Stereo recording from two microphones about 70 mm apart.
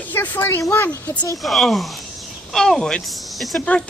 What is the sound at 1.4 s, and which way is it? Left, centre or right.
Speech, centre.